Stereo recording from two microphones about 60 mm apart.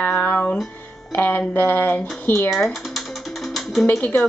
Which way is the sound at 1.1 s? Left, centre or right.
Left.